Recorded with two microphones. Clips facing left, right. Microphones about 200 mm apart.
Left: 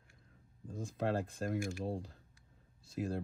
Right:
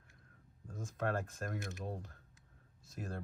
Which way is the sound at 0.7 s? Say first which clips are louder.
Left 2 dB; 30° left (ahead or behind).